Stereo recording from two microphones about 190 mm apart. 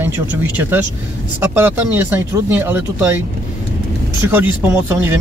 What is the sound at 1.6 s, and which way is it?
Speech, 10° right (ahead or behind).